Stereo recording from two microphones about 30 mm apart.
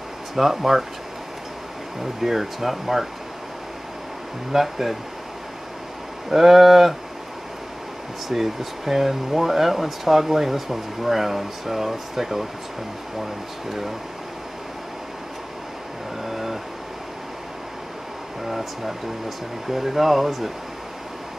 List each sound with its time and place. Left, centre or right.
0.4 s speech: centre
2.2 s speech: centre
4.5 s speech: centre
6.3 s speech: centre
8.3 s speech: centre
16.3 s vehicle: centre
18.5 s speech: centre